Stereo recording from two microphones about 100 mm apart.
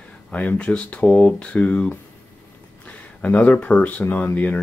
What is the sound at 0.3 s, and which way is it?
Speech, 15° left (ahead or behind).